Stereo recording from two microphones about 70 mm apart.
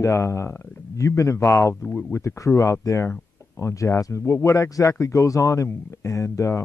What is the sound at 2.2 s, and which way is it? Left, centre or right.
Speech, left.